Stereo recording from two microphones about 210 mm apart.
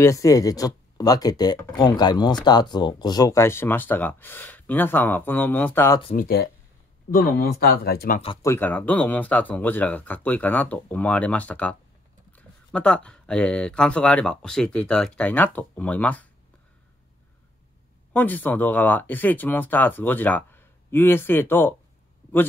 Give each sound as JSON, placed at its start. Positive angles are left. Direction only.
{"t": 0.0, "sound": "speech", "side_deg": 15}
{"t": 6.1, "sound": "speech", "side_deg": 45}
{"t": 8.4, "sound": "speech", "side_deg": 10}
{"t": 18.1, "sound": "speech", "side_deg": 10}